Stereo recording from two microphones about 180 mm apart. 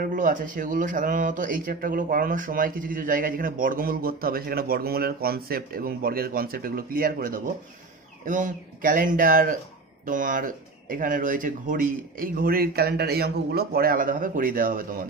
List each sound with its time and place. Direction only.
0.0 s speech: 45° right (ahead or behind)